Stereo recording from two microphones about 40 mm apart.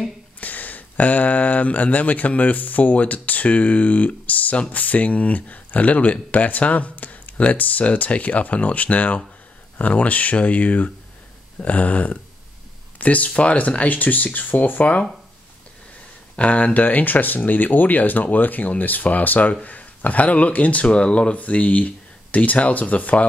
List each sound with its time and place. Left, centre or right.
0.4 s speech: left
16.3 s speech: left